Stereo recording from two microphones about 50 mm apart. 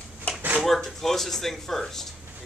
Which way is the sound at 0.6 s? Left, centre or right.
Centre.